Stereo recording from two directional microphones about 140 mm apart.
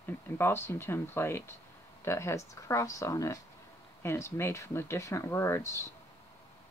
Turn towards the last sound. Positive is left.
turn(degrees=20)  # may be behind; listen again after turning